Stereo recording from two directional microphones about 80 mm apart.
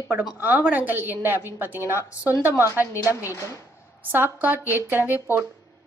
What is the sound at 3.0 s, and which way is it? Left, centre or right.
A woman's voice, right.